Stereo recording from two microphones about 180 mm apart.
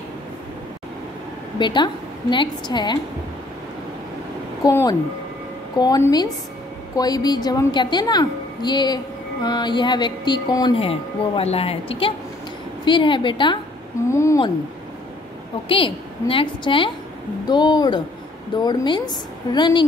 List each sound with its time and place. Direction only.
1.6 s a woman's voice: 25° left (ahead or behind)
4.6 s a woman's voice: 20° left (ahead or behind)
14.1 s speech: 15° left (ahead or behind)
15.7 s a woman's voice: 30° left (ahead or behind)